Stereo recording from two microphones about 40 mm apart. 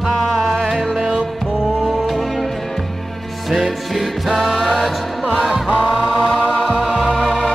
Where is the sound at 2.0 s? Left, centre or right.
Centre.